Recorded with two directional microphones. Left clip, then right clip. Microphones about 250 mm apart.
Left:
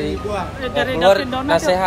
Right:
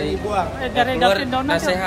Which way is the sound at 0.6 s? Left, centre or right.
Right.